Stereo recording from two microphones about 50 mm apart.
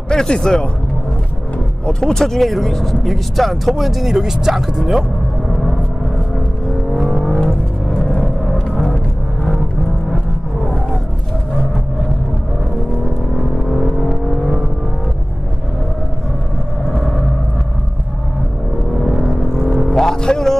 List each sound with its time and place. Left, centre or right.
0.1 s speech: centre
1.9 s speech: centre
6.9 s vehicle: centre
7.4 s music: centre
13.7 s vehicle: centre
18.9 s a sound: centre
19.9 s music: centre